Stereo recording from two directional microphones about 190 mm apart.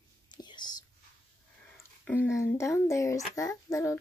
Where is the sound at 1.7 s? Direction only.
5° left (ahead or behind).